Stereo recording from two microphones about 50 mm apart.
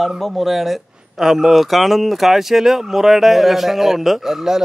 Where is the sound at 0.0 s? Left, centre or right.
Centre.